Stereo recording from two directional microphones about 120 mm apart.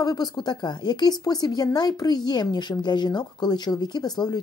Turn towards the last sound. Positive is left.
turn(degrees=35)  # may be behind; listen again after turning